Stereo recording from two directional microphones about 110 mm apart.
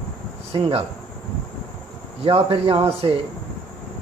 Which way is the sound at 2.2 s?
65° right (ahead or behind).